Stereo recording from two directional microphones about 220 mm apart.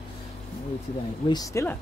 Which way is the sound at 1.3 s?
15° left (ahead or behind).